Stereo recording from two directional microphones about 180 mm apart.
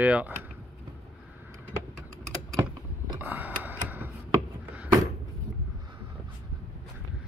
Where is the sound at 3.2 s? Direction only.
10° right (ahead or behind).